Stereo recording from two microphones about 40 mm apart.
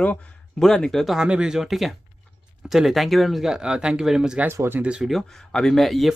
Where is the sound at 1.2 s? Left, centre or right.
Right.